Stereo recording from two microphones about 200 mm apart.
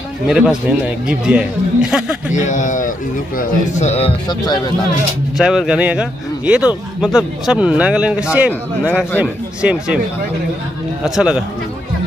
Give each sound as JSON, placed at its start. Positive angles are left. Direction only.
{"t": 0.3, "sound": "speech", "side_deg": -5}
{"t": 2.3, "sound": "a man's voice", "side_deg": 40}
{"t": 5.4, "sound": "speech", "side_deg": -5}
{"t": 11.1, "sound": "speech", "side_deg": -5}